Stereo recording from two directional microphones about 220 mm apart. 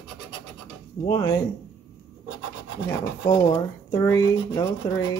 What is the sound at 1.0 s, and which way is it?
Speech, 20° left (ahead or behind).